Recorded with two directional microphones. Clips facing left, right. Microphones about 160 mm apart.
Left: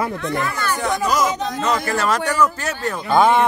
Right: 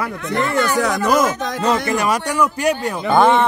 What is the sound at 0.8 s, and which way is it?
Speech, 70° right (ahead or behind).